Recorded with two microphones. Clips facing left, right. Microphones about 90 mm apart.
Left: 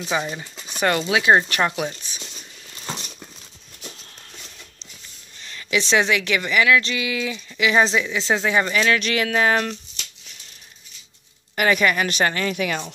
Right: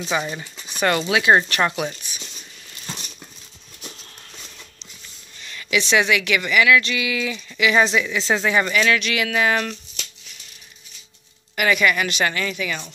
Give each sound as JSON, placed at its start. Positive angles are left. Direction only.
{"t": 0.1, "sound": "speech", "side_deg": 0}
{"t": 0.7, "sound": "a sound", "side_deg": 20}
{"t": 1.1, "sound": "speech", "side_deg": 15}
{"t": 5.4, "sound": "a woman's voice", "side_deg": 30}
{"t": 8.8, "sound": "a woman's voice", "side_deg": 35}
{"t": 11.5, "sound": "a woman's voice", "side_deg": 40}
{"t": 12.5, "sound": "speech", "side_deg": 55}